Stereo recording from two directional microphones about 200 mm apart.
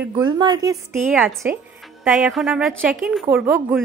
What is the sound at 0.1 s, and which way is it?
A woman's voice, 20° right (ahead or behind).